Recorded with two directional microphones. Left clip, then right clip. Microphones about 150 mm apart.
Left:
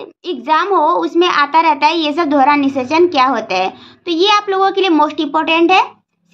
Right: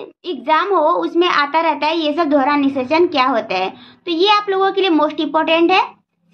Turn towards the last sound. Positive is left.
turn(degrees=20)  # may be behind; listen again after turning